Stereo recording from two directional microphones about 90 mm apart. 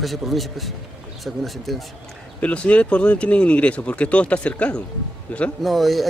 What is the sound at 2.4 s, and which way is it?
Speech, 15° left (ahead or behind).